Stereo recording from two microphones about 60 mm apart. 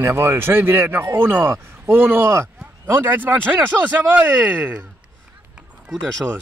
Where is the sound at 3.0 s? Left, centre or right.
Right.